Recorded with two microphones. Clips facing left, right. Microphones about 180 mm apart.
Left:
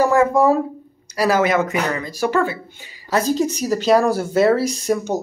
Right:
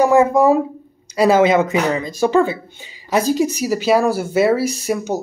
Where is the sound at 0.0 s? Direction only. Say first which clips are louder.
Right 2 dB; 20° right (ahead or behind).